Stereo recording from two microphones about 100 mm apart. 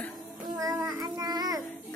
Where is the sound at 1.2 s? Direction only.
40° right (ahead or behind).